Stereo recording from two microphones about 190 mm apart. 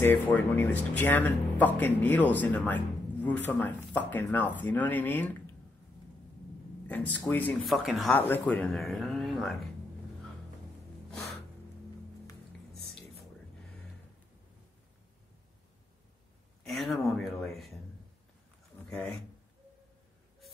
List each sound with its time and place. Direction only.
0.0 s speech: 10° left (ahead or behind)
6.9 s speech: 10° left (ahead or behind)
16.6 s a sound: centre (ahead or behind)
18.9 s speech: centre (ahead or behind)